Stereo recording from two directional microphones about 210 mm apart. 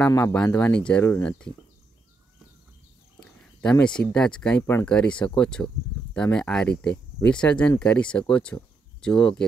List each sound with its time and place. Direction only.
0.0 s speech: 10° left (ahead or behind)
3.2 s speech: 5° left (ahead or behind)